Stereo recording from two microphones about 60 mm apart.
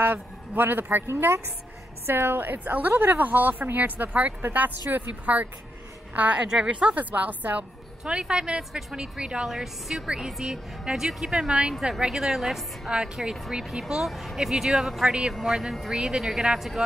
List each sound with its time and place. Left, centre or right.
0.0 s a woman's voice: right
8.0 s a woman's voice: centre
12.9 s a woman's voice: centre